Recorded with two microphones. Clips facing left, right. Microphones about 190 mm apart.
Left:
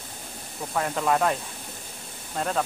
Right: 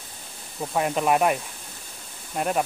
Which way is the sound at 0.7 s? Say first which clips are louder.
Right 2 dB; 20° right (ahead or behind).